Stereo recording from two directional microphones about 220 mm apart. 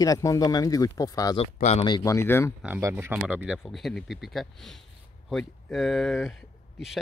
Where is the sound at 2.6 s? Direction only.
5° right (ahead or behind).